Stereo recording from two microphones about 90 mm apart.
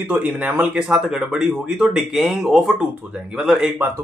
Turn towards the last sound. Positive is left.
turn(degrees=-5)  # may be behind; listen again after turning